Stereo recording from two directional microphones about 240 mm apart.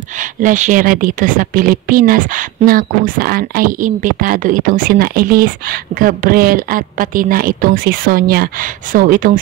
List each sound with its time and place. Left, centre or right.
0.2 s a woman's voice: right